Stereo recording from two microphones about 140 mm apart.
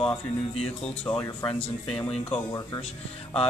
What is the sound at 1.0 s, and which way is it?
Speech, 10° left (ahead or behind).